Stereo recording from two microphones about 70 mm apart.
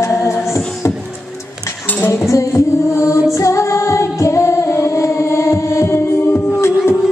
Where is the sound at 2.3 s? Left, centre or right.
Left.